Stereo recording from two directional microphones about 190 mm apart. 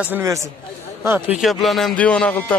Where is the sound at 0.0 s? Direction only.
15° right (ahead or behind).